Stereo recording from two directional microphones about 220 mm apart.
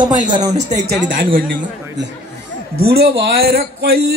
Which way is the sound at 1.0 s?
40° right (ahead or behind).